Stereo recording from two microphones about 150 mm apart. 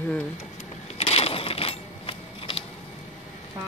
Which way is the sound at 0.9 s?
40° left (ahead or behind).